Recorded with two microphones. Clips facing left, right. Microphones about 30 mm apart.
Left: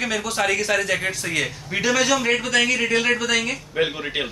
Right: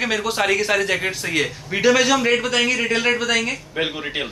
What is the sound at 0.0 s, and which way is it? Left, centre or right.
A man's voice, centre.